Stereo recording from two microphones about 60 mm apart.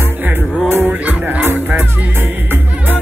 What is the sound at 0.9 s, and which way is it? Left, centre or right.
Music, right.